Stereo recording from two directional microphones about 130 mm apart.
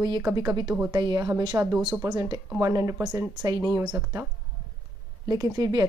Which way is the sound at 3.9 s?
20° right (ahead or behind).